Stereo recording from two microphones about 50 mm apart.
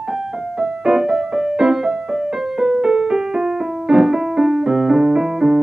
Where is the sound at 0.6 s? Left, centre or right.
Centre.